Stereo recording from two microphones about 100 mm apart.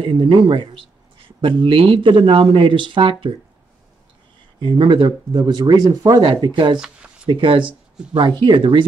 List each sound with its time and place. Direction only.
0.0 s speech: 55° right (ahead or behind)
4.6 s speech: 55° right (ahead or behind)
6.8 s a sound: 10° right (ahead or behind)
7.2 s speech: 55° right (ahead or behind)